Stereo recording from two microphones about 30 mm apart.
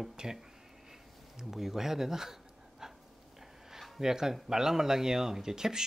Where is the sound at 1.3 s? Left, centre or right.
Centre.